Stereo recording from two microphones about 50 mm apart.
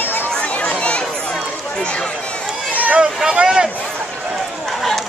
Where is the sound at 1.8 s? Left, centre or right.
Left.